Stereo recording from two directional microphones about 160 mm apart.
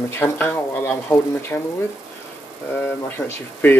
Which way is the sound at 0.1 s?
15° left (ahead or behind).